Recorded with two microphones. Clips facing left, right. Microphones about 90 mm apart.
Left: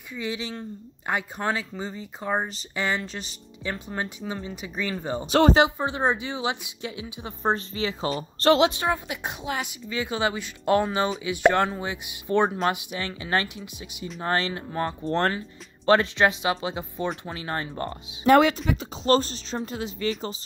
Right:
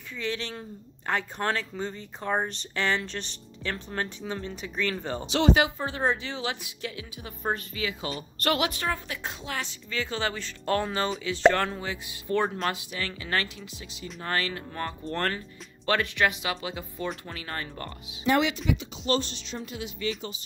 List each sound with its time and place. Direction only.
0.2 s speech: 10° left (ahead or behind)
5.2 s speech: 45° left (ahead or behind)
5.5 s speech: 20° left (ahead or behind)
18.2 s speech: 50° left (ahead or behind)
18.7 s speech: 40° left (ahead or behind)